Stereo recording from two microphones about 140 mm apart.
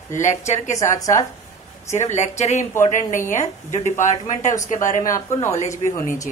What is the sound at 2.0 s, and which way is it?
Speech, 55° left (ahead or behind).